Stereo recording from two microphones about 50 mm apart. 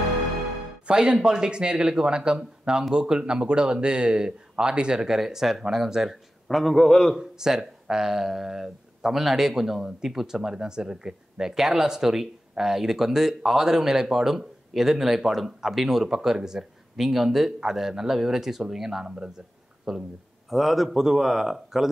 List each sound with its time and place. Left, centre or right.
0.8 s speech: centre
7.2 s speech: centre